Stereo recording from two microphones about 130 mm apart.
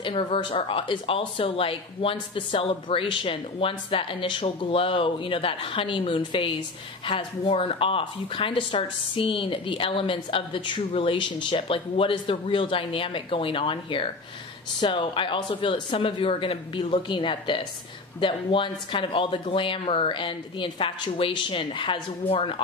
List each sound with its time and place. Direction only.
0.0 s speech: 40° left (ahead or behind)